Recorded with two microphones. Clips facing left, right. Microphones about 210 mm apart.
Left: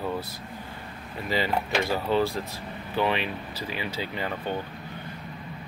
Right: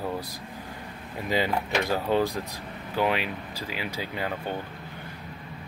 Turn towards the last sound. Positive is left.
turn(degrees=-10)  # may be behind; listen again after turning